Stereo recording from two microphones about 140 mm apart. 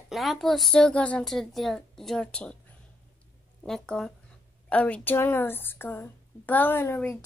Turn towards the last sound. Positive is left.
turn(degrees=15)  # may be behind; listen again after turning